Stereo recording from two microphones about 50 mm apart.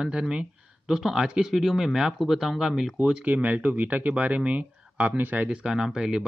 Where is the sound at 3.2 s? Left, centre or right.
Right.